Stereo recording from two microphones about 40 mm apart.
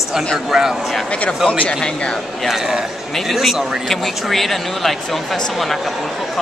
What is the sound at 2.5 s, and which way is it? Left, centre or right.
A man's voice, centre.